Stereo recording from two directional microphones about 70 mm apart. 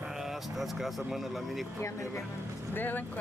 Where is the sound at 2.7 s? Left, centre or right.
Left.